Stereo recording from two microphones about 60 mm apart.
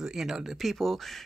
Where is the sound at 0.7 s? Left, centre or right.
Centre.